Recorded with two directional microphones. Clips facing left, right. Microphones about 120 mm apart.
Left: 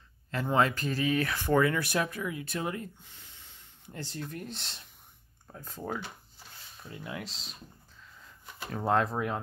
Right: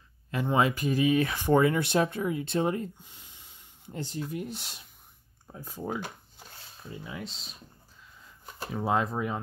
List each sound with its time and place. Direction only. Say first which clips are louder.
0.3 s speech: right 1 dB; 10° right (ahead or behind)
3.0 s speech: right 1 dB; 15° right (ahead or behind)
6.9 s speech: right 1 dB; centre (ahead or behind)
8.7 s speech: even; 5° right (ahead or behind)